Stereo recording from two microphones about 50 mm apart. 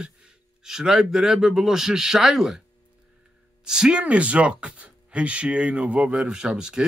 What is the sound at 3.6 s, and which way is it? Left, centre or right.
Speech, centre.